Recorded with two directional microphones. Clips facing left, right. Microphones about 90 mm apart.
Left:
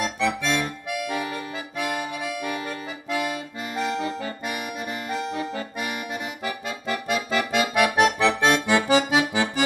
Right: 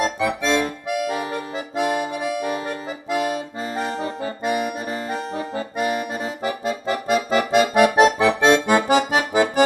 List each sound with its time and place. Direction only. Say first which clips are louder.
0.4 s accordion: right 5 dB; 35° right (ahead or behind)
8.6 s accordion: right 3 dB; 45° right (ahead or behind)